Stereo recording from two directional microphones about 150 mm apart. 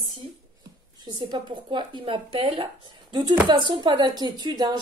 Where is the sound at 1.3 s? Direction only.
30° right (ahead or behind).